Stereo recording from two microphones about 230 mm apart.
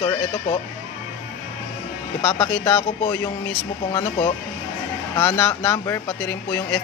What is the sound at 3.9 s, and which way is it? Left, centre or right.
Speech, left.